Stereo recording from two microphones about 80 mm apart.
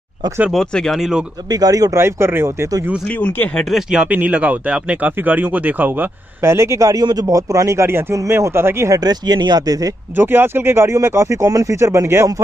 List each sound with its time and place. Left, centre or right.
0.5 s speech: centre
1.5 s speech: right
2.0 s speech: right
3.2 s speech: left
3.7 s speech: centre; by 8.9 s right
8.9 s speech: right
10.1 s speech: right